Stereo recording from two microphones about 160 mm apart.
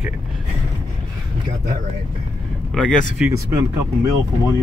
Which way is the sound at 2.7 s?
5° left (ahead or behind).